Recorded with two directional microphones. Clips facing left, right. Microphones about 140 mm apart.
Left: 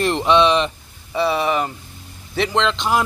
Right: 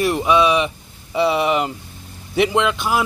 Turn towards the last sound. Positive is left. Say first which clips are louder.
# even
turn(degrees=-5)  # may be behind; listen again after turning